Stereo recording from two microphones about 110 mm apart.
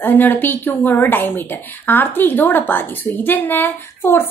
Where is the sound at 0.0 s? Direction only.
20° left (ahead or behind).